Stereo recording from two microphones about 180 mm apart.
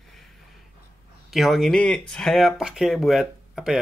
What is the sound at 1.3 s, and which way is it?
Speech, centre (ahead or behind).